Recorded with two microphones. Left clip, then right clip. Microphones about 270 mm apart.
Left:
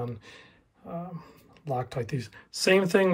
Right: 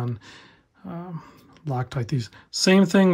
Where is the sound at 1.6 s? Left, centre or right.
Right.